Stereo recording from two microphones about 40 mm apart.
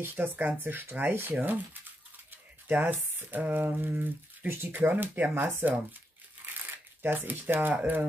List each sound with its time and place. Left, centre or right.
0.1 s speech: right
7.0 s speech: right